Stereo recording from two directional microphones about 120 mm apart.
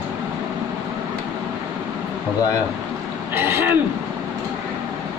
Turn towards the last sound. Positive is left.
turn(degrees=-20)  # may be behind; listen again after turning